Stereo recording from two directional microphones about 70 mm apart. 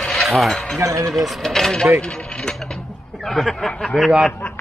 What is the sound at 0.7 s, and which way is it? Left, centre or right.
Speech, right.